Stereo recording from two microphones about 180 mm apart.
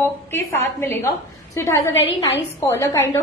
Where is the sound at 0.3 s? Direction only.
15° left (ahead or behind).